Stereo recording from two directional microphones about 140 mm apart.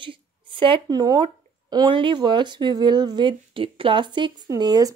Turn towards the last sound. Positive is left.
turn(degrees=-30)  # may be behind; listen again after turning